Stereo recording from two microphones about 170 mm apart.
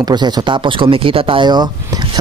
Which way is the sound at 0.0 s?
25° right (ahead or behind).